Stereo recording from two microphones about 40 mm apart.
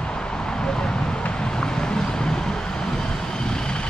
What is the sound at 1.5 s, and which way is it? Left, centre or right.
Vehicle, centre.